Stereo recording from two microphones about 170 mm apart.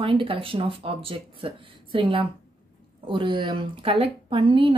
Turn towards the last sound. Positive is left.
turn(degrees=-30)  # may be behind; listen again after turning